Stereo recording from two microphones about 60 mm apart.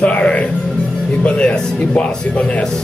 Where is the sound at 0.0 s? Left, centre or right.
Left.